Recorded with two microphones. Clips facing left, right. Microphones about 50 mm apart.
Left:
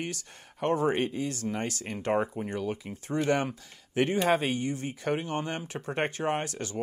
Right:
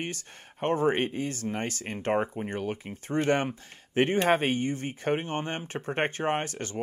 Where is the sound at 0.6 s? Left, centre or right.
Right.